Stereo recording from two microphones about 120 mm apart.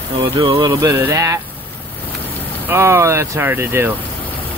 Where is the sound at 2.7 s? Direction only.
25° right (ahead or behind).